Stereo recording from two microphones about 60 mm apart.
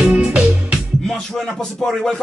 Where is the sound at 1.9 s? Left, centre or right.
Centre.